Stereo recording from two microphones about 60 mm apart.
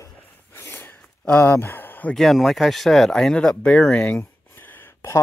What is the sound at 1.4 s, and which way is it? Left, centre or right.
Speech, left.